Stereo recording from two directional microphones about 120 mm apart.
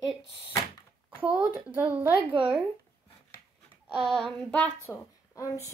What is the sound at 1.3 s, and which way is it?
Speech, 20° right (ahead or behind).